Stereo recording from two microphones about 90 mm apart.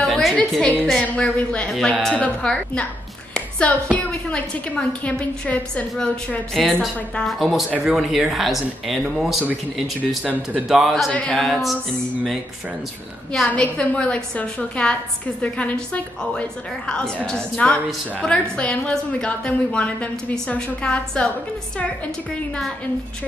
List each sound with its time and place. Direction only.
0.0 s music: 5° left (ahead or behind)
0.9 s a woman's voice: 15° left (ahead or behind)
1.7 s a woman's voice: 5° left (ahead or behind)
6.5 s speech: centre (ahead or behind)
10.2 s speech: 15° right (ahead or behind)
10.7 s speech: centre (ahead or behind)
11.1 s speech: 10° left (ahead or behind)
13.5 s a woman's voice: 15° left (ahead or behind)